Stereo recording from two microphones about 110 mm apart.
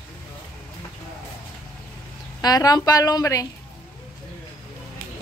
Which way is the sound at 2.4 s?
35° left (ahead or behind).